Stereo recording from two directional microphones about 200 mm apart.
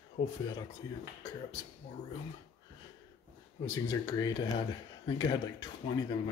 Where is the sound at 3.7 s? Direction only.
20° left (ahead or behind).